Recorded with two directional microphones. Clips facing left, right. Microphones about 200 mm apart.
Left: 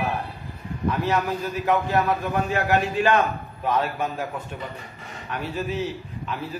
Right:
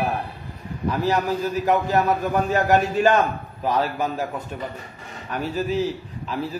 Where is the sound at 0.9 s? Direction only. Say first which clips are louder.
Right 3 dB; 35° right (ahead or behind).